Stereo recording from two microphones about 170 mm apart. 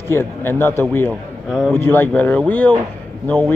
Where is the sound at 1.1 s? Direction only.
Centre (ahead or behind).